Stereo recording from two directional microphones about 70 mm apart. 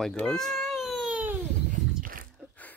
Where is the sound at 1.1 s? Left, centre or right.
Right.